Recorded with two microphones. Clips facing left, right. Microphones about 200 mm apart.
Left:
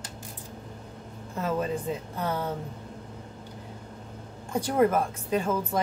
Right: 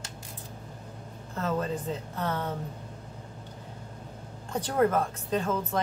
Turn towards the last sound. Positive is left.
turn(degrees=10)  # may be behind; listen again after turning